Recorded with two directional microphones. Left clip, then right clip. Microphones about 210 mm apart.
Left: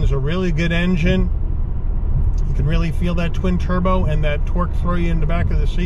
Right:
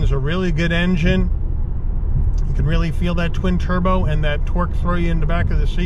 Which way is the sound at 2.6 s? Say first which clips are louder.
Right 1 dB; centre (ahead or behind).